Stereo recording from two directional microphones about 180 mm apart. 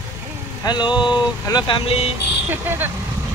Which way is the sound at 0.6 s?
25° left (ahead or behind).